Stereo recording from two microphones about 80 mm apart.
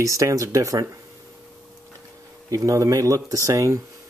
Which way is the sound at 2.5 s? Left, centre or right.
Right.